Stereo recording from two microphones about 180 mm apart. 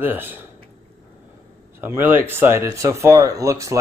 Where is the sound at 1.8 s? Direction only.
10° right (ahead or behind).